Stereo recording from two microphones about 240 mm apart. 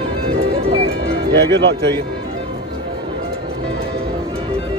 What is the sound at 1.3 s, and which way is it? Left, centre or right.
Speech, right.